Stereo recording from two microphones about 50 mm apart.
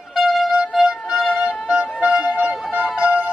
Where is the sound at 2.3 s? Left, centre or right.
Right.